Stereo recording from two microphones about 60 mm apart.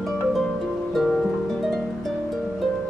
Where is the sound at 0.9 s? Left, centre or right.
Centre.